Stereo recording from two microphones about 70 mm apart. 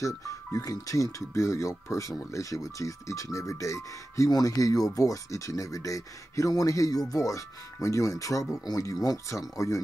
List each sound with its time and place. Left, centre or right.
0.0 s speech: left